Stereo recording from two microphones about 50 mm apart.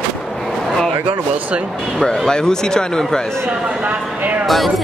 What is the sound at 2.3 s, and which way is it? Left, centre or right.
Speech, centre.